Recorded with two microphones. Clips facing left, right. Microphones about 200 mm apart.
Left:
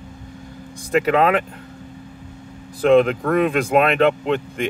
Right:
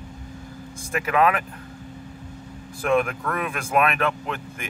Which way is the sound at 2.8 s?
30° left (ahead or behind).